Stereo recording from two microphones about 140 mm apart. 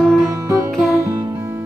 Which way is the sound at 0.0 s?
5° left (ahead or behind).